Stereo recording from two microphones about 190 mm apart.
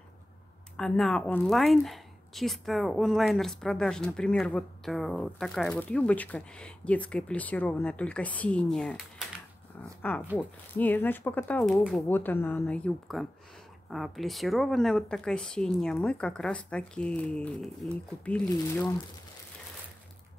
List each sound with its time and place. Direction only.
0.7 s speech: centre (ahead or behind)
10.8 s speech: 10° left (ahead or behind)
18.5 s speech: 15° left (ahead or behind)